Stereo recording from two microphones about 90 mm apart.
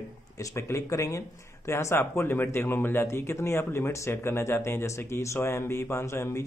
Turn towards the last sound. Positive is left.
turn(degrees=30)  # may be behind; listen again after turning